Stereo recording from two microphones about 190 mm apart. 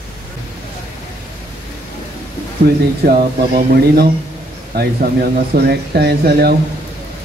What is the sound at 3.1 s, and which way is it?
Speech, 55° right (ahead or behind).